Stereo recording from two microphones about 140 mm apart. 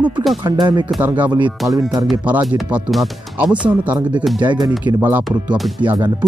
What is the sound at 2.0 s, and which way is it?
Speech, 10° right (ahead or behind).